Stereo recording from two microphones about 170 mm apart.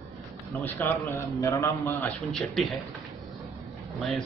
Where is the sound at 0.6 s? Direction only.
15° left (ahead or behind).